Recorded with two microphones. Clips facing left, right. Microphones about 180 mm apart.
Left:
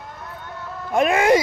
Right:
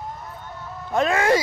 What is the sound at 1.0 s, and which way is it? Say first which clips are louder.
Speech: left 3 dB; 20° left (ahead or behind).